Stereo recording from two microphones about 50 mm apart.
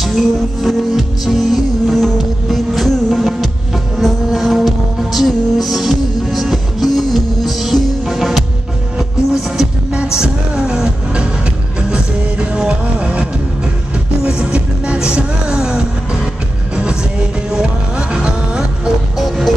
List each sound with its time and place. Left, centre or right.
0.0 s music: centre
12.5 s music: centre
17.5 s music: centre
19.1 s music: centre